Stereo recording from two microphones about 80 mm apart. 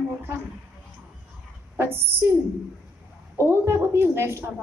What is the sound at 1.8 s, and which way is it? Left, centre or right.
Speech, right.